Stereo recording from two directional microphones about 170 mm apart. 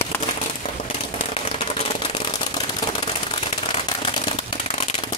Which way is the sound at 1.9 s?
35° left (ahead or behind).